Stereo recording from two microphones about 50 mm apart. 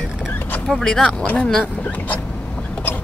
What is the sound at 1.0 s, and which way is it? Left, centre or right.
Speech, left.